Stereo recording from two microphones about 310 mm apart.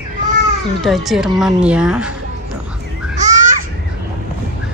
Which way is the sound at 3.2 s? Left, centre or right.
Right.